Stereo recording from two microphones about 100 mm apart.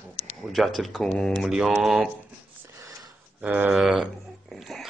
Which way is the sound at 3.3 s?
15° right (ahead or behind).